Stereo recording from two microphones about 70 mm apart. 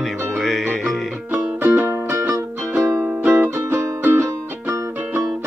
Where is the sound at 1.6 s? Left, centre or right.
Right.